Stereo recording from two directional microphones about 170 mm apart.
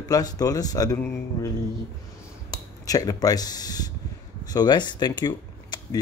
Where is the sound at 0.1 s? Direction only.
20° left (ahead or behind).